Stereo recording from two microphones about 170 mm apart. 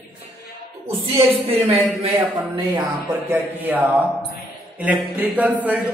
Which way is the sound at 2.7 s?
15° right (ahead or behind).